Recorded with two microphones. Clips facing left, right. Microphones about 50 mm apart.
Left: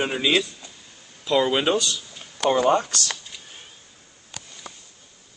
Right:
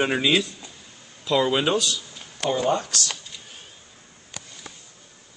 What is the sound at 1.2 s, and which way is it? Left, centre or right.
Speech, centre.